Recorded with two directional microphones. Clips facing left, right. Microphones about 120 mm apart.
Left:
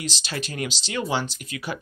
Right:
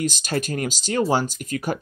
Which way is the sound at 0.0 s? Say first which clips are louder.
Right 7 dB; 45° right (ahead or behind).